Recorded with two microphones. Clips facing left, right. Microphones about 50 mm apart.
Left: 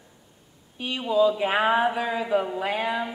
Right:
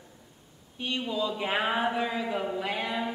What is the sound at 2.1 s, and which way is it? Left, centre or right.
Speech, centre.